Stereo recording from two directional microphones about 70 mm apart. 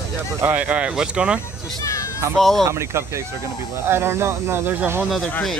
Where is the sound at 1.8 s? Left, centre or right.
Left.